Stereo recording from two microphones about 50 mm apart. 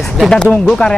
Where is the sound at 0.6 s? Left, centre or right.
Centre.